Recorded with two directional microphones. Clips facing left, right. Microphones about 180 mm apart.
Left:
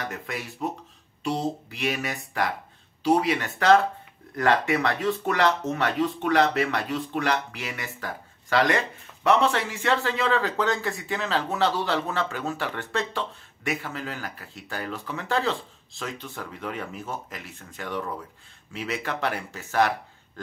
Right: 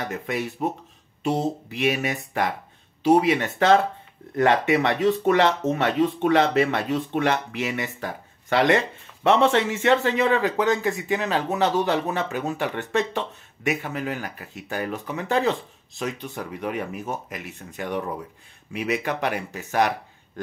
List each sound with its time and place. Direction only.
0.0 s speech: 20° right (ahead or behind)